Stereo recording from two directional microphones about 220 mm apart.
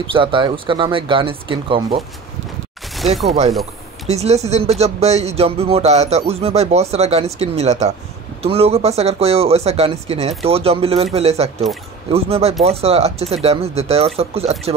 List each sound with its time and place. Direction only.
0.0 s speech: 25° right (ahead or behind)
4.1 s speech: 30° right (ahead or behind)